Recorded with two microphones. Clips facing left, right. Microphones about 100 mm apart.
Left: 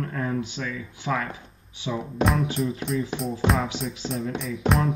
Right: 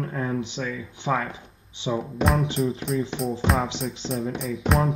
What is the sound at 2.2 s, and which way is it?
Speech, centre (ahead or behind).